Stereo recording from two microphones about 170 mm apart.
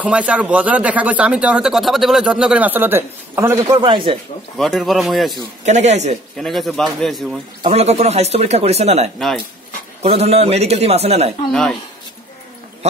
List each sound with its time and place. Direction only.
0.0 s speech: 10° right (ahead or behind)
3.6 s speech: 25° right (ahead or behind)
4.6 s speech: centre (ahead or behind)
5.7 s a man's voice: 40° right (ahead or behind)
6.3 s speech: centre (ahead or behind)
7.6 s speech: 40° right (ahead or behind)